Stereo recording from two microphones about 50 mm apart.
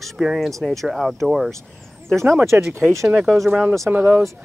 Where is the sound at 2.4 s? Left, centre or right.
Right.